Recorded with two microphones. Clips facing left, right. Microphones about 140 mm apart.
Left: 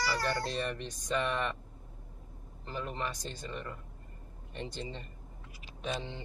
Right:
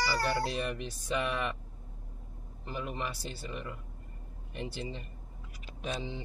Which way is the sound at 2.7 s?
10° right (ahead or behind).